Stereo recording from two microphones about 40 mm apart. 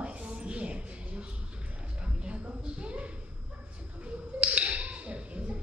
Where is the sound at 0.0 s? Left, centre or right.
Right.